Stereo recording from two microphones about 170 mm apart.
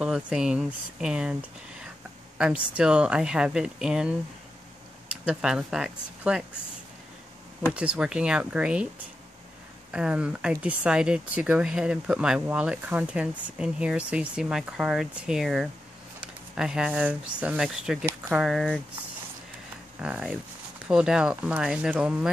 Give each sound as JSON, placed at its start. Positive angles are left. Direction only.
{"t": 0.0, "sound": "speech", "side_deg": -5}
{"t": 7.7, "sound": "speech", "side_deg": -5}
{"t": 9.8, "sound": "speech", "side_deg": -5}
{"t": 20.0, "sound": "speech", "side_deg": -5}